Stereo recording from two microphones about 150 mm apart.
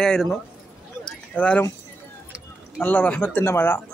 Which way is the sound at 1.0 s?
10° left (ahead or behind).